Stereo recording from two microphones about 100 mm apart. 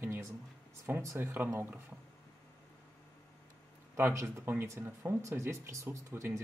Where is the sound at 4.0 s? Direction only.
25° right (ahead or behind).